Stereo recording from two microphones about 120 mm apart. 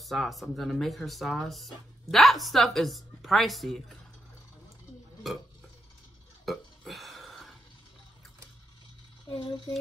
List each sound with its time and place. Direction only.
0.0 s a woman's voice: centre (ahead or behind)
6.4 s burping: centre (ahead or behind)
9.3 s speech: 50° left (ahead or behind)